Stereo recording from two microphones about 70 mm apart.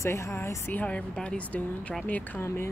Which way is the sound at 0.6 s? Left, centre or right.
Left.